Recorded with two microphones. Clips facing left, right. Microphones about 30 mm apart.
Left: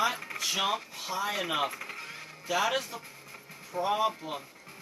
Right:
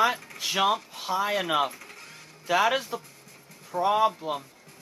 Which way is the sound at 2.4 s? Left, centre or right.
Centre.